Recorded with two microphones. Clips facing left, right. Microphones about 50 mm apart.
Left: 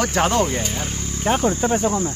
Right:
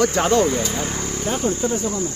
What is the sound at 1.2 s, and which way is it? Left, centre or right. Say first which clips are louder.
Speech: left 4 dB; left.